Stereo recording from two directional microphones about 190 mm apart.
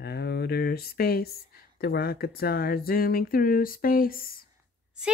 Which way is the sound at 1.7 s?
55° left (ahead or behind).